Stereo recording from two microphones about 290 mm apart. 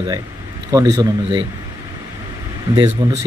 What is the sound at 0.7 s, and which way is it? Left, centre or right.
Speech, centre.